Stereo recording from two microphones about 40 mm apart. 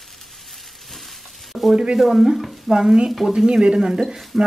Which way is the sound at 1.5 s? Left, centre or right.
Centre.